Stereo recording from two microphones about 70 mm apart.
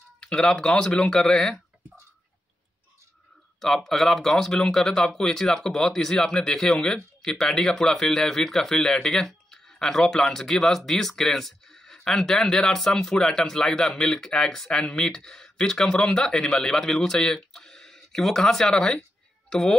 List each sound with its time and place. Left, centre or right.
0.2 s speech: centre
3.6 s speech: centre